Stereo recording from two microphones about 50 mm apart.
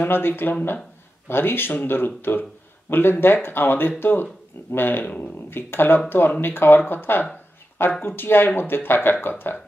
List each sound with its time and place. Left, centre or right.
0.0 s speech: left